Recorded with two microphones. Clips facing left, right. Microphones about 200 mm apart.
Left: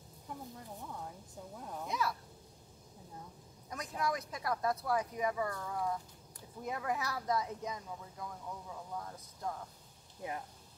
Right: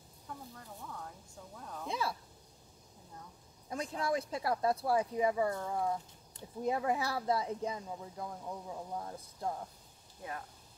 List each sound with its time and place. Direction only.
0.3 s speech: 15° left (ahead or behind)
1.9 s speech: 30° right (ahead or behind)
3.7 s speech: 30° right (ahead or behind)